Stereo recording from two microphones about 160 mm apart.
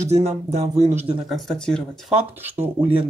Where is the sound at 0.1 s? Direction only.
45° right (ahead or behind).